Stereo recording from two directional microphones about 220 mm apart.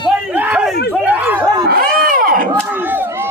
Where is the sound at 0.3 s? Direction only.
5° right (ahead or behind).